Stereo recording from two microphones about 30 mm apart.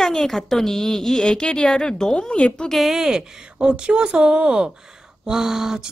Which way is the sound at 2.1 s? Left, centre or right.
Left.